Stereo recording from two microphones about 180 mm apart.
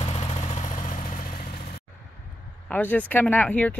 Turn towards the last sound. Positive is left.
turn(degrees=5)  # may be behind; listen again after turning